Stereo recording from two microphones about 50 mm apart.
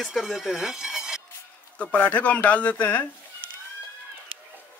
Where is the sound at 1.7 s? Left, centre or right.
Left.